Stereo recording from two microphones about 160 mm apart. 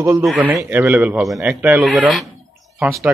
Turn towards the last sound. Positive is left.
turn(degrees=-5)  # may be behind; listen again after turning